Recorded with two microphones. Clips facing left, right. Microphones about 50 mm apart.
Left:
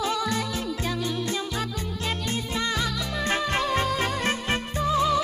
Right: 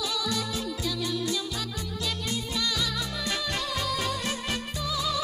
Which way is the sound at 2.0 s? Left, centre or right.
Left.